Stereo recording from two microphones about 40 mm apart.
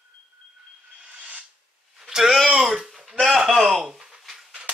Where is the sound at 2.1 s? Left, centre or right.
Centre.